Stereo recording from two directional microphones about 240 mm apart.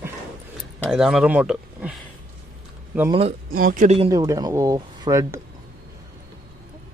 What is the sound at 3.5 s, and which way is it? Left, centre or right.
Speech, right.